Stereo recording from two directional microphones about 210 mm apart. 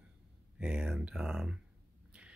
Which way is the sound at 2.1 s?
5° right (ahead or behind).